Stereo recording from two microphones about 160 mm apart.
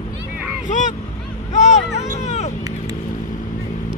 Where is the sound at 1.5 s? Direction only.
45° left (ahead or behind).